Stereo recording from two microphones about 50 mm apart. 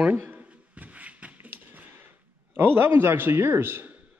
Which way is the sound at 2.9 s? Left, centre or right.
Right.